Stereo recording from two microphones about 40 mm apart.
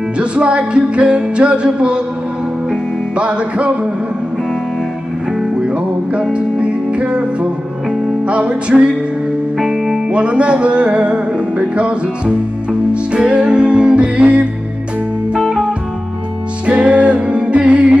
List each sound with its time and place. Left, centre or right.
0.2 s music: right
3.2 s music: right
5.6 s music: right
8.3 s music: right
9.6 s music: centre
10.1 s music: right
16.6 s music: right